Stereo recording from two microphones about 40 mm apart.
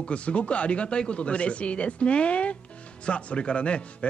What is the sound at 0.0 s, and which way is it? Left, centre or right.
Speech, left.